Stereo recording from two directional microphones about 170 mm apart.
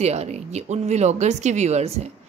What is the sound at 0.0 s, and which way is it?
Speech, 40° right (ahead or behind).